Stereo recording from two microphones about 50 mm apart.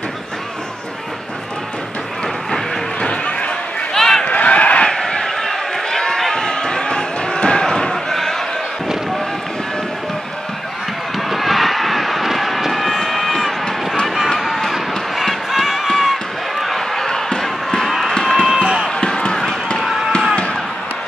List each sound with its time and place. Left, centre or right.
3.0 s run: left
3.9 s a sound: centre
4.2 s a sound: left
4.8 s run: centre
7.9 s slam: centre
11.1 s vehicle: centre
14.6 s run: centre
15.9 s slam: centre
18.2 s run: centre
18.5 s a sound: centre
18.9 s a sound: centre
19.8 s fireworks: centre